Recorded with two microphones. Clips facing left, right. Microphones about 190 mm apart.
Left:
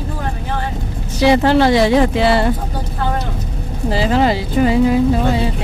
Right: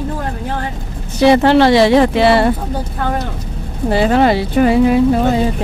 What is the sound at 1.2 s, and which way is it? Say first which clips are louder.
Speech: right 3 dB; 60° right (ahead or behind).